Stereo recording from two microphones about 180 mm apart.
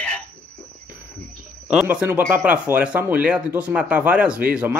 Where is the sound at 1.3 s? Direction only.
5° right (ahead or behind).